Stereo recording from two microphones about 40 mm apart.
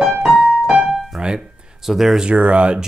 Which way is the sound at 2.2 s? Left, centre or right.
Right.